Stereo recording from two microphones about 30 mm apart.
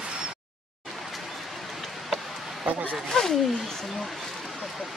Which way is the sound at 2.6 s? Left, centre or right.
Right.